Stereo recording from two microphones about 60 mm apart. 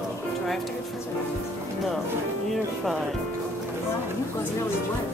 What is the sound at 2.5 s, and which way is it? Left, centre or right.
Music, centre.